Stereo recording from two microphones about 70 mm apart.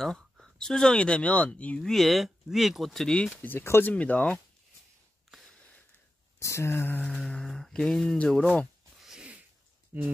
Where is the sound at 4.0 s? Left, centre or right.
Centre.